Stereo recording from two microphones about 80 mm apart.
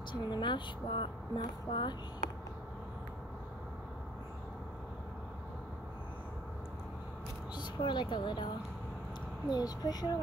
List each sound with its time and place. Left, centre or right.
0.1 s speech: left
1.4 s speech: left
7.5 s speech: left
9.5 s speech: left